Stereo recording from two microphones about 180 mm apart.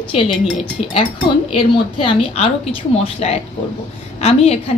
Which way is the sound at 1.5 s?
30° left (ahead or behind).